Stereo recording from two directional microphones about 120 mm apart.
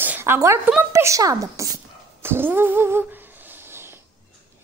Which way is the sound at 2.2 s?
20° right (ahead or behind).